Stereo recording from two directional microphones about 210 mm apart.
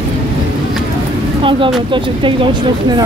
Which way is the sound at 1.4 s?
25° right (ahead or behind).